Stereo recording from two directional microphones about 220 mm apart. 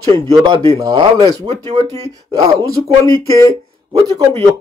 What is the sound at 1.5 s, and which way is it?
Speech, 30° right (ahead or behind).